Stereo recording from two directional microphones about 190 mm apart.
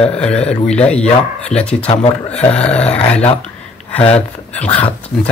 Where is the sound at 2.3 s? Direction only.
5° left (ahead or behind).